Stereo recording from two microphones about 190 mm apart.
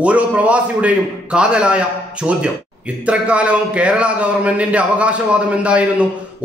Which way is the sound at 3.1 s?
5° right (ahead or behind).